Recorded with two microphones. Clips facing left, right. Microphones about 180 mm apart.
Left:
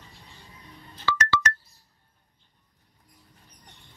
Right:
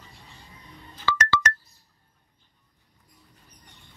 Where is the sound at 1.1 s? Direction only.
75° right (ahead or behind).